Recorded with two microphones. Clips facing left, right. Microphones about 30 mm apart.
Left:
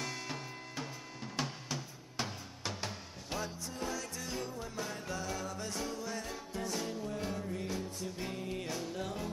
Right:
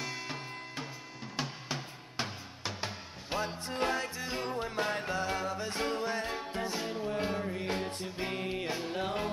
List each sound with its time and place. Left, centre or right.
0.0 s music: centre
3.4 s music: right
4.0 s music: right